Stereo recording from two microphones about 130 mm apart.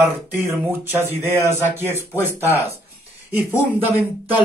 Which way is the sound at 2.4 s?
20° left (ahead or behind).